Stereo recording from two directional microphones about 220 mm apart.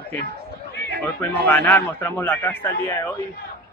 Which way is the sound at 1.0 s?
10° left (ahead or behind).